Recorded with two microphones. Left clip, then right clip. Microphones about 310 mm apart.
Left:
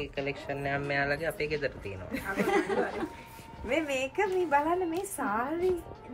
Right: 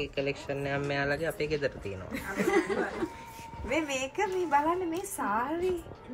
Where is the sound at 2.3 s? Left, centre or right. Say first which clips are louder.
Even; left.